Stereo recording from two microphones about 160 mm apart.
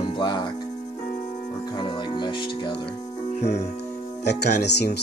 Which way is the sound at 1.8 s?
30° left (ahead or behind).